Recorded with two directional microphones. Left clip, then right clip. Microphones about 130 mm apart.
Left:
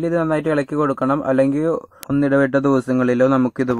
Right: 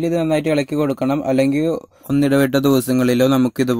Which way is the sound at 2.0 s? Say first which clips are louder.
Even; 45° right (ahead or behind).